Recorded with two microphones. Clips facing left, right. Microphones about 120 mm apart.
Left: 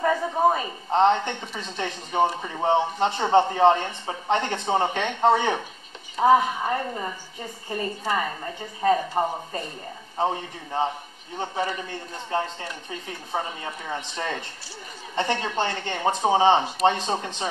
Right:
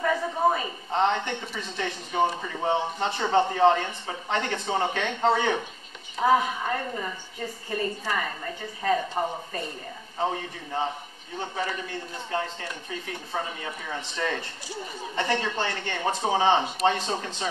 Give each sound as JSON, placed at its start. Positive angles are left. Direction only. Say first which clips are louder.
{"t": 0.0, "sound": "a woman's voice", "louder": "left 3 dB", "side_deg": 30}
{"t": 13.8, "sound": "speech", "louder": "even", "side_deg": 25}